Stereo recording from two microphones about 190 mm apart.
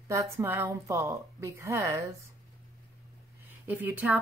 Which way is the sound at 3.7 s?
10° right (ahead or behind).